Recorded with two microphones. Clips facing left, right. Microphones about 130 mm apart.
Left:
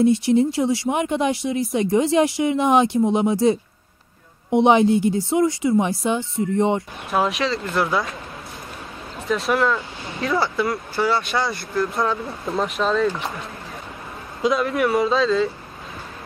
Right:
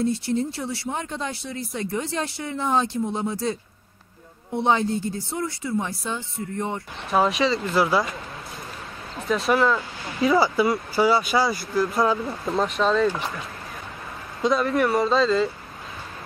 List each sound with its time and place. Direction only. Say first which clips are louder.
0.3 s speech: left 8 dB; 15° left (ahead or behind)
7.1 s speech: right 1 dB; centre (ahead or behind)
9.3 s speech: even; centre (ahead or behind)
14.4 s speech: left 1 dB; centre (ahead or behind)